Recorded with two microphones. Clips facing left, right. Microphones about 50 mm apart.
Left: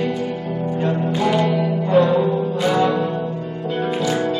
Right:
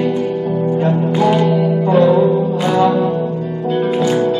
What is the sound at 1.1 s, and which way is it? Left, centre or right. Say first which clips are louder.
Music: right 6 dB; right.